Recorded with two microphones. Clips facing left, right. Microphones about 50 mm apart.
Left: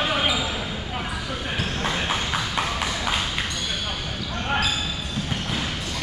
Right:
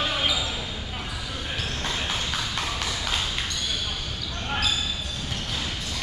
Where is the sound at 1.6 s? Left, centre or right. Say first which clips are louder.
Left 4 dB; left.